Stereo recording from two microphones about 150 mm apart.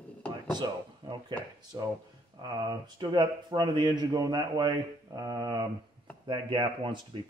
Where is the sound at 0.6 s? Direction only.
30° right (ahead or behind).